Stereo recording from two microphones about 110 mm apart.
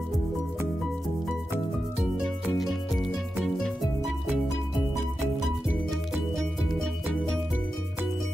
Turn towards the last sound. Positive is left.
turn(degrees=0)  # may be behind; listen again after turning